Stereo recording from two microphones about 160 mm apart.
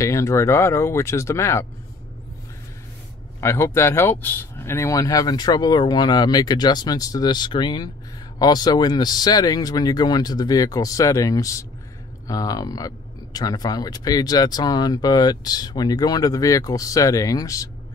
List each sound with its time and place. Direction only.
0.0 s speech: 20° left (ahead or behind)
3.3 s speech: 15° left (ahead or behind)